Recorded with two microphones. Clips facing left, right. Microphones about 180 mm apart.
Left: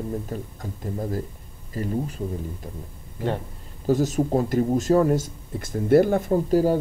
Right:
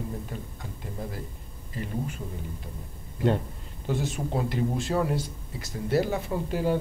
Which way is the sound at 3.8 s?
40° left (ahead or behind).